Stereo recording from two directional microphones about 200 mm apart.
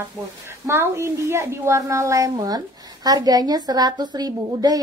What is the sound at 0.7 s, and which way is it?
A woman's voice, 15° right (ahead or behind).